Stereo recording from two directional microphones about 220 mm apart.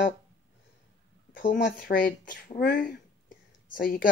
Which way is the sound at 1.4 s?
40° left (ahead or behind).